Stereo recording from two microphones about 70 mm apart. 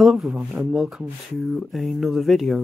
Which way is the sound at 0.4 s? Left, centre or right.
Centre.